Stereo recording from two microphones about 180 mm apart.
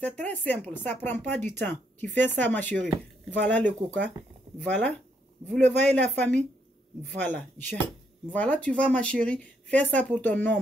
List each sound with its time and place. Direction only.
0.0 s speech: 10° left (ahead or behind)